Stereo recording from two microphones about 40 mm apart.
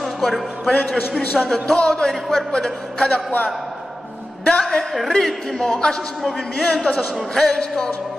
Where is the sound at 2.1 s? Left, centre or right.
Centre.